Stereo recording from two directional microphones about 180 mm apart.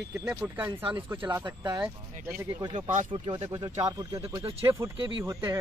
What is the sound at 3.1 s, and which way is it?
Speech, 25° right (ahead or behind).